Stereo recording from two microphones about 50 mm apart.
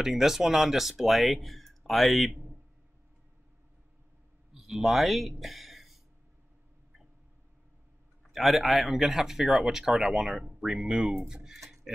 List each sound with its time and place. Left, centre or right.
0.0 s speech: centre
2.3 s a sound: right
4.6 s speech: centre
5.4 s a sound: centre
8.3 s speech: centre
10.9 s speech: centre